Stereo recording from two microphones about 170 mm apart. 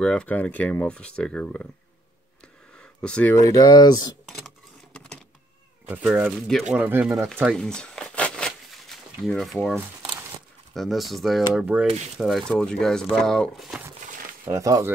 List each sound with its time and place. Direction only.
0.0 s speech: 5° left (ahead or behind)
2.8 s speech: 5° left (ahead or behind)
3.3 s speech: 20° left (ahead or behind)
4.9 s power windows: 5° left (ahead or behind)
5.9 s speech: 5° right (ahead or behind)
7.4 s a sound: 5° left (ahead or behind)
10.7 s speech: centre (ahead or behind)
14.4 s speech: 20° right (ahead or behind)